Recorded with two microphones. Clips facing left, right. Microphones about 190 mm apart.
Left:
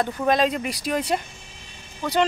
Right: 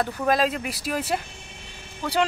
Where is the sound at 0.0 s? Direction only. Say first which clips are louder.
Left 2 dB; 5° right (ahead or behind).